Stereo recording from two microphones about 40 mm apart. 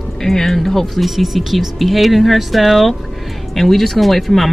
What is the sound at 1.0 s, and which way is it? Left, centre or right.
Speech, centre.